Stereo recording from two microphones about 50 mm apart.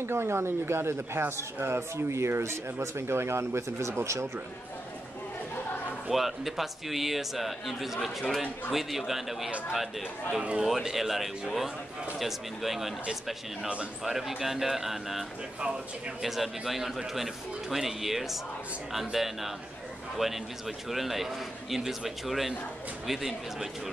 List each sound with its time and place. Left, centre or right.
0.0 s speech: right
6.0 s speech: centre